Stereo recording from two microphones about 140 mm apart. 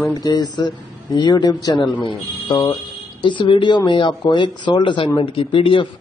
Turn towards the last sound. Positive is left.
turn(degrees=40)  # may be behind; listen again after turning